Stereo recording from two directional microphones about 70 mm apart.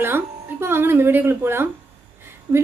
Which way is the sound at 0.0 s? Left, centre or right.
Right.